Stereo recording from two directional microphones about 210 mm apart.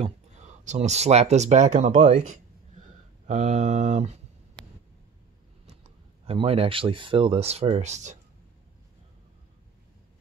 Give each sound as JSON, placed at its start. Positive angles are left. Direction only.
{"t": 0.0, "sound": "speech", "side_deg": -35}
{"t": 5.7, "sound": "speech", "side_deg": -30}